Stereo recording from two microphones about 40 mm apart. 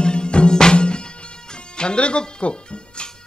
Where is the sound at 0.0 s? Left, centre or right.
Left.